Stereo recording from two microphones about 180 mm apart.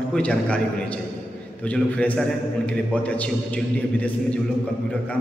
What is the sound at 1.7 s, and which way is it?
A man's voice, 5° left (ahead or behind).